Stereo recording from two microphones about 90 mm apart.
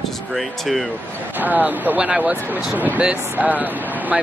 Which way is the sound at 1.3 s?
20° right (ahead or behind).